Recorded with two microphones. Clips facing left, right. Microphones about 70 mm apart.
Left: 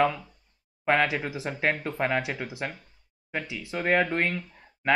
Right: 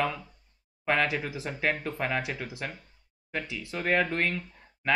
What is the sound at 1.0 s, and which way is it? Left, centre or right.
Speech, centre.